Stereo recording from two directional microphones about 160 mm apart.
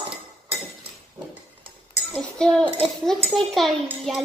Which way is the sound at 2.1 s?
5° left (ahead or behind).